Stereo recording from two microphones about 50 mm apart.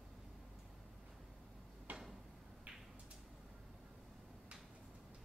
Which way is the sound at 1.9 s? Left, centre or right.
Right.